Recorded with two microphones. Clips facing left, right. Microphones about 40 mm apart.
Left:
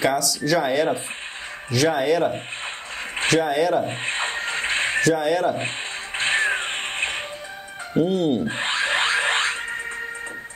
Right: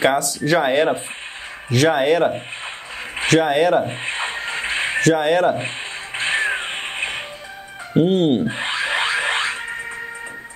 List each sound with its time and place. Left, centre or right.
0.0 s speech: right
4.0 s music: centre
5.0 s speech: right
6.1 s music: centre
7.9 s speech: right
8.5 s a sound: centre
9.4 s music: centre